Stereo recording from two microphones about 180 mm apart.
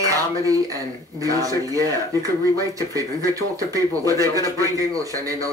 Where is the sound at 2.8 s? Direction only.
20° right (ahead or behind).